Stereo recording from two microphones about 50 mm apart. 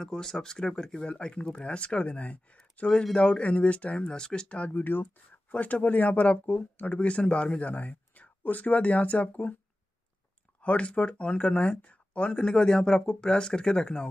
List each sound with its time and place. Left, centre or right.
0.0 s speech: centre; by 2.4 s left
2.9 s speech: centre
4.6 s speech: left
5.5 s speech: left
10.6 s speech: left
11.8 s a sound: left
12.3 s speech: centre